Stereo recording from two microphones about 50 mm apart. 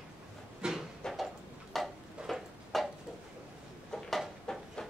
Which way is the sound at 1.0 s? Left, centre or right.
Centre.